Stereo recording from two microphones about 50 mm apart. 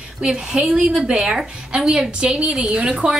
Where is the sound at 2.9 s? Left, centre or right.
Centre.